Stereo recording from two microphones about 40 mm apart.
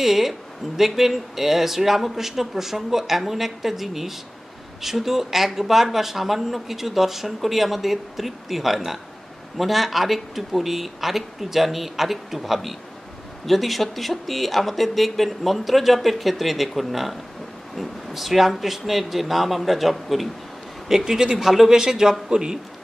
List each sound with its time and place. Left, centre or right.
0.0 s speech: centre
20.9 s a man's voice: centre